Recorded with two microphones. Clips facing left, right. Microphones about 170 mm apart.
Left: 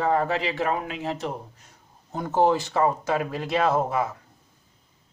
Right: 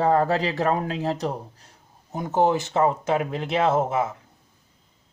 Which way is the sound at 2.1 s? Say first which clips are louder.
Even; 20° right (ahead or behind).